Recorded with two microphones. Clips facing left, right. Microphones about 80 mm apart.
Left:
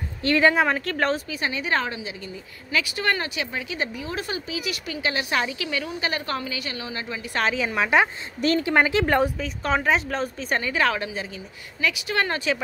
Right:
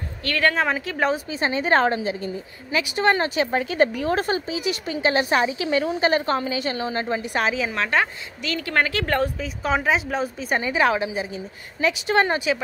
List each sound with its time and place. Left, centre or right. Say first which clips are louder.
0.2 s speech: left 3 dB; centre
0.6 s speech: even; centre
1.3 s a woman's voice: right 5 dB; right
2.7 s a woman's voice: right 4 dB; right
4.5 s a woman's voice: right 5 dB; right
7.3 s speech: left 1 dB; centre
7.7 s a woman's voice: left 2 dB; centre
8.4 s speech: left 7 dB; left
8.6 s a woman's voice: right 1 dB; centre
9.4 s speech: right 1 dB; centre
10.6 s a woman's voice: right 4 dB; centre
12.4 s speech: right 2 dB; centre